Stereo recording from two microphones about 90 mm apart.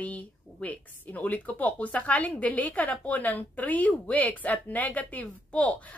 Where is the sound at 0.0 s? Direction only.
15° left (ahead or behind).